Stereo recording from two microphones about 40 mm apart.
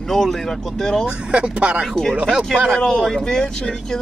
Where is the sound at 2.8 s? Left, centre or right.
Centre.